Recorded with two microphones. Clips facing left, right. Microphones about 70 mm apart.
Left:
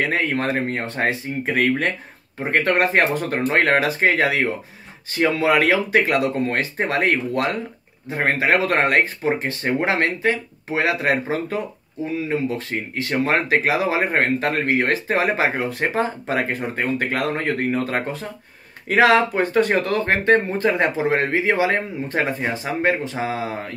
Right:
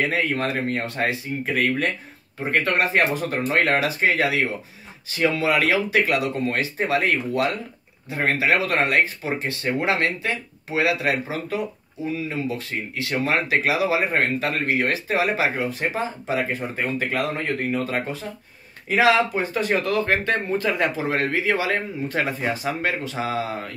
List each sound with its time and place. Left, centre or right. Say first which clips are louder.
0.1 s speech: left 2 dB; left
2.8 s speech: left 2 dB; left